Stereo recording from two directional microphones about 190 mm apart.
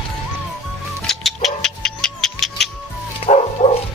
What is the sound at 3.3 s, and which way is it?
Bow-wow, 35° left (ahead or behind).